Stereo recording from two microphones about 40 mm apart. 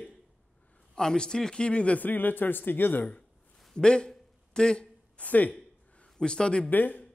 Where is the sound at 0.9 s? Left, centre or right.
Centre.